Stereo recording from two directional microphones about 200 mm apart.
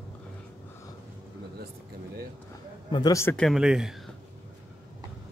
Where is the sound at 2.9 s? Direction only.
20° left (ahead or behind); by 3.9 s 5° right (ahead or behind).